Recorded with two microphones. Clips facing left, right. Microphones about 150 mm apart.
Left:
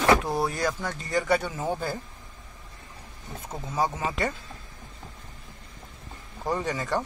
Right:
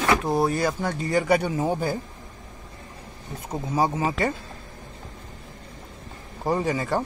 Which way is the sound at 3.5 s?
10° right (ahead or behind).